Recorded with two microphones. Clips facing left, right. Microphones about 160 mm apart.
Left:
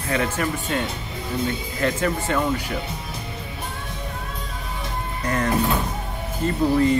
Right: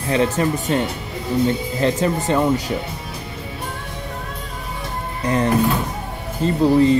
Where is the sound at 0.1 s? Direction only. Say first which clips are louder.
Right 5 dB; 30° right (ahead or behind).